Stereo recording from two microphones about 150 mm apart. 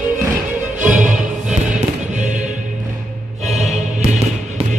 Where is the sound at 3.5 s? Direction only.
50° right (ahead or behind).